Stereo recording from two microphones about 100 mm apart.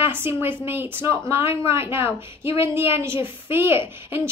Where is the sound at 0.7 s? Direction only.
20° right (ahead or behind).